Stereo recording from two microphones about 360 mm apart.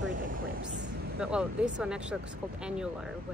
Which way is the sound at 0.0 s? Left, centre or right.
Right.